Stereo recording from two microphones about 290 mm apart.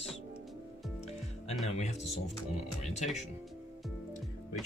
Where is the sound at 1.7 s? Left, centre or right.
Left.